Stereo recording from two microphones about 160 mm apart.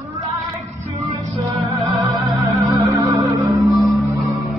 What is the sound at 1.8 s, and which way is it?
Music, 20° right (ahead or behind).